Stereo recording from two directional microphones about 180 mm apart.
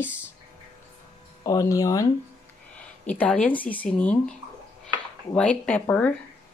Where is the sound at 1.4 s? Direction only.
20° left (ahead or behind).